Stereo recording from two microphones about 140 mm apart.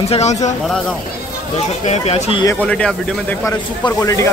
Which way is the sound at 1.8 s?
55° left (ahead or behind).